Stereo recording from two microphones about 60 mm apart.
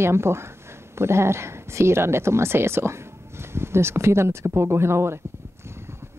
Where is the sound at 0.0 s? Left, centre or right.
Right.